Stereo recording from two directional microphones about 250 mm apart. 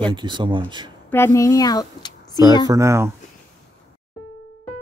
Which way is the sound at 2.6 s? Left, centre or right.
Centre.